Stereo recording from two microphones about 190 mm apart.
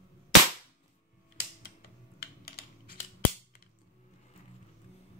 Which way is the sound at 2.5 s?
55° left (ahead or behind).